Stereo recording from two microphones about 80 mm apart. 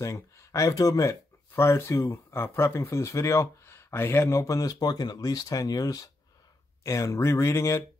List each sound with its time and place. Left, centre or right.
0.0 s speech: left
1.5 s speech: left
6.8 s speech: left